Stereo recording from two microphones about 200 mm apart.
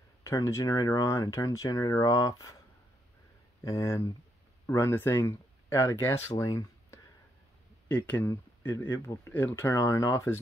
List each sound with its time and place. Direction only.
0.2 s speech: 15° left (ahead or behind)
3.6 s speech: 15° left (ahead or behind)